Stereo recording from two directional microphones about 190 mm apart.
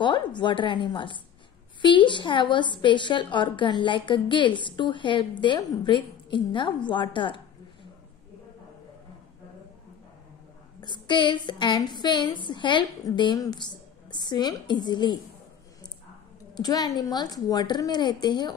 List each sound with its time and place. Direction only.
0.0 s a woman's voice: 25° left (ahead or behind)
10.8 s a woman's voice: 25° left (ahead or behind)
16.5 s a woman's voice: 20° left (ahead or behind)